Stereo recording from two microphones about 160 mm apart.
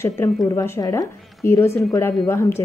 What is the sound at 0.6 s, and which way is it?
Speech, 20° left (ahead or behind).